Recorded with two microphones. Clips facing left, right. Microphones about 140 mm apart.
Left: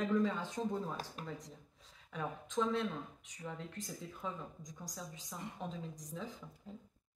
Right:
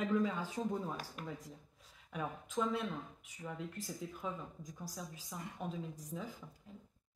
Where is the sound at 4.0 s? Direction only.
5° right (ahead or behind).